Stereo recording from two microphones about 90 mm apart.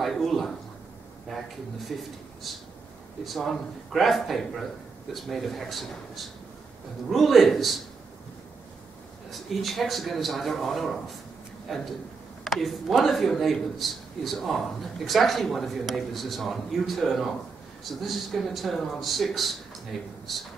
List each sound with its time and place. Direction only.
0.0 s a sound: centre (ahead or behind)
1.9 s speech: centre (ahead or behind)
9.5 s speech: centre (ahead or behind)